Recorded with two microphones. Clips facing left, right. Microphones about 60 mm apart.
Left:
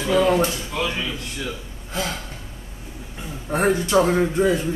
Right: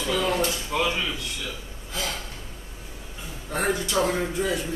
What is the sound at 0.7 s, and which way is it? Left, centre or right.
Speech, centre.